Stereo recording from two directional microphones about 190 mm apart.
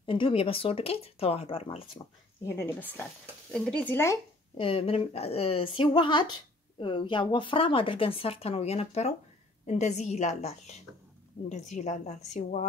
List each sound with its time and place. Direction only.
0.0 s speech: 25° left (ahead or behind)
2.4 s speech: 10° left (ahead or behind)
4.6 s a woman's voice: 30° left (ahead or behind)